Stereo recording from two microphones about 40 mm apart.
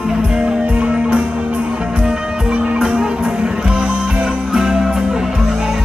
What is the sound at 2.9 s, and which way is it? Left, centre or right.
Music, centre.